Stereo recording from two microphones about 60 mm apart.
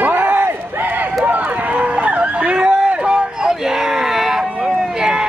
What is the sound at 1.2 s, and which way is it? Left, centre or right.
Run, right.